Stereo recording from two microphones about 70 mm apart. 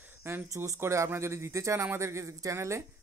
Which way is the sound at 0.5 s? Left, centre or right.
Right.